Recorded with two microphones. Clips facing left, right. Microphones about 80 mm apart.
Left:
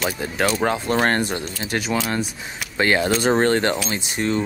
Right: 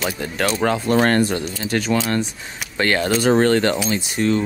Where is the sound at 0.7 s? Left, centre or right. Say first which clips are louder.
Right 6 dB; centre.